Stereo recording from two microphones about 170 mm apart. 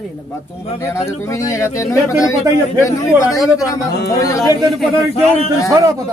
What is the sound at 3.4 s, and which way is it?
Speech, 5° right (ahead or behind).